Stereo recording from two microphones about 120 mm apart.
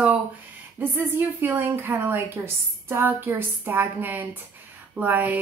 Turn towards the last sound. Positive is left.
turn(degrees=-15)  # may be behind; listen again after turning